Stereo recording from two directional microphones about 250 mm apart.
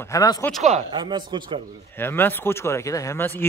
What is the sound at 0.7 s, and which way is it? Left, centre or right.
Speech, right.